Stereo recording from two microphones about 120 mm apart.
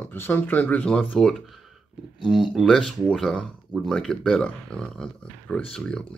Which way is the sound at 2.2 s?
5° right (ahead or behind).